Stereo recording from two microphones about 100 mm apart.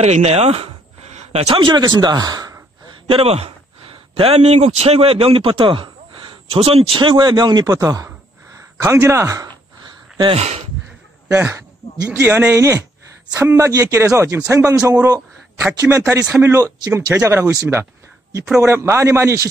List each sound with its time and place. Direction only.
0.0 s speech: 90° right; by 2.5 s 40° right (ahead or behind)
3.1 s a man's voice: 70° right (ahead or behind); by 9.5 s 30° right (ahead or behind)
10.3 s speech: 90° right
11.3 s a man's voice: 25° right (ahead or behind)
16.9 s speech: 20° right (ahead or behind)
18.4 s speech: 10° right (ahead or behind)
18.7 s speech: 30° right (ahead or behind)